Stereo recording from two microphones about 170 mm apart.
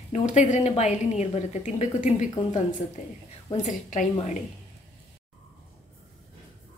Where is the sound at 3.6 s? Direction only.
45° left (ahead or behind).